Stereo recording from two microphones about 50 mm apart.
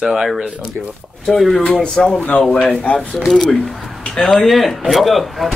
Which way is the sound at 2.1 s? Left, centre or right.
Left.